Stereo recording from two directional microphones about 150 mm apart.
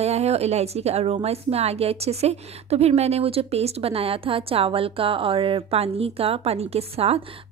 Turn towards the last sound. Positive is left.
turn(degrees=-40)  # may be behind; listen again after turning